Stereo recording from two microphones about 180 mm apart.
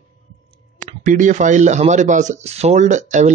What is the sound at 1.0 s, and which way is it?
Speech, 45° right (ahead or behind).